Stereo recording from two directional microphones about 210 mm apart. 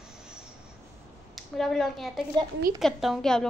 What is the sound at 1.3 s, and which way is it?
A woman's voice, centre (ahead or behind).